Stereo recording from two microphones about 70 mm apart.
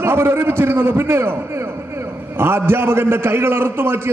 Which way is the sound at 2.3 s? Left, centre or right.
Right.